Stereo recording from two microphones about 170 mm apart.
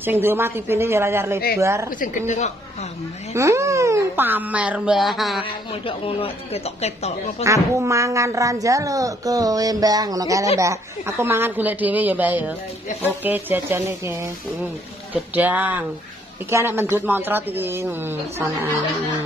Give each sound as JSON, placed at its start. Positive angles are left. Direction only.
{"t": 0.0, "sound": "speech", "side_deg": -15}
{"t": 1.9, "sound": "a woman's voice", "side_deg": 50}
{"t": 3.3, "sound": "speech", "side_deg": -15}
{"t": 5.4, "sound": "speech", "side_deg": 30}
{"t": 7.4, "sound": "speech", "side_deg": -15}
{"t": 15.3, "sound": "speech", "side_deg": -10}